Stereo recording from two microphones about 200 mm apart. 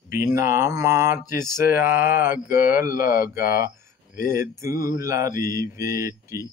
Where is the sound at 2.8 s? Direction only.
45° left (ahead or behind).